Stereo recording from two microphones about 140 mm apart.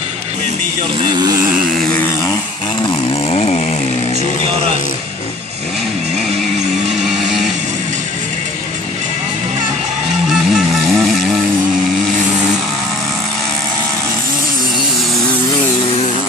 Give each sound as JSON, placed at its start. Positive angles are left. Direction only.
{"t": 1.0, "sound": "speech", "side_deg": -30}
{"t": 2.8, "sound": "chainsaw", "side_deg": 40}
{"t": 10.5, "sound": "vehicle", "side_deg": 0}